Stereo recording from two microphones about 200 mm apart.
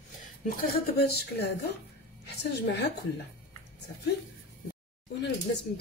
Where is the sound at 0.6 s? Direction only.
50° left (ahead or behind).